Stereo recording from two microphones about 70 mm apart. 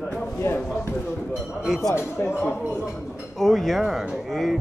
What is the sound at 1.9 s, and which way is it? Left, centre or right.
Speech, left.